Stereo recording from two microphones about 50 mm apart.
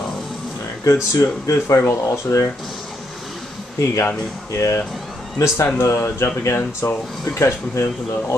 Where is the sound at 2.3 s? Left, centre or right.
Left.